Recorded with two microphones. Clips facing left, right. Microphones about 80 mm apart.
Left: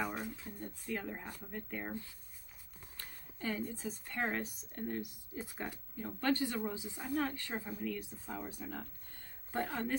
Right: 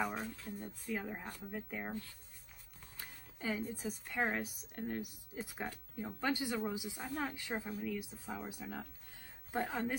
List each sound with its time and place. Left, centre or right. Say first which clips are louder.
0.0 s speech: even; centre
3.0 s speech: left 1 dB; centre
7.8 s speech: left 1 dB; centre
9.5 s speech: even; centre